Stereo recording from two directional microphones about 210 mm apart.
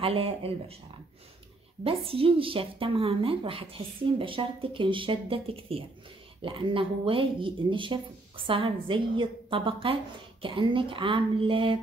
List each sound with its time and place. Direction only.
0.0 s a woman's voice: 25° right (ahead or behind)
1.9 s a woman's voice: 25° right (ahead or behind)